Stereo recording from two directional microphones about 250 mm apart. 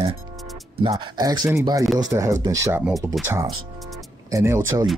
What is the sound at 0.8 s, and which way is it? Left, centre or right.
Speech, centre.